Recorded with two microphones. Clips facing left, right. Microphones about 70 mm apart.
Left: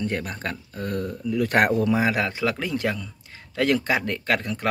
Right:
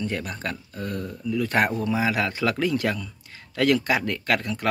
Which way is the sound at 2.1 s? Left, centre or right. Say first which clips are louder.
Even; left.